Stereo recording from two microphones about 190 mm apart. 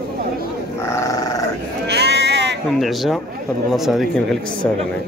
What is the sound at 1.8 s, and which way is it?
Sheep, 60° right (ahead or behind).